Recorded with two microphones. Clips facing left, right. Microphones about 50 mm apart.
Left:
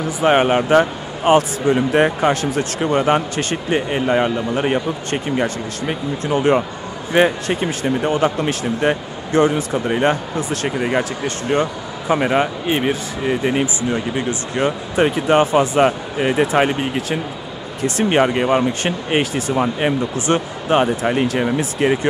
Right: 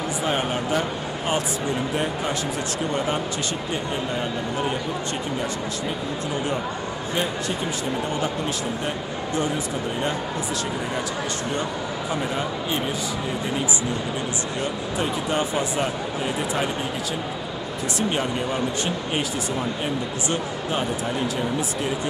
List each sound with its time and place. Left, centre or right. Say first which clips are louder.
0.2 s speech: left 12 dB; left